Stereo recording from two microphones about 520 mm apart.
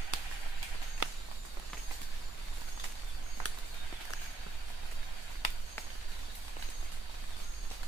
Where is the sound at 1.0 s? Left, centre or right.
Right.